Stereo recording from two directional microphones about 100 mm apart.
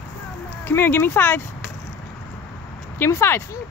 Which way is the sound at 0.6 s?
20° left (ahead or behind).